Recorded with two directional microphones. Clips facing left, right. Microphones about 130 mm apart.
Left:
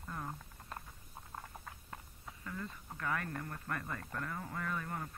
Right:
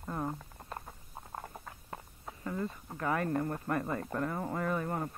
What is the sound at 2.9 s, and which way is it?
Speech, 30° right (ahead or behind).